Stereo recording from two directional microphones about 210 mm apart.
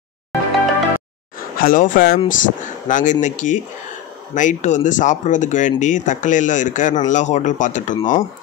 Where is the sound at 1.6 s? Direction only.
40° left (ahead or behind).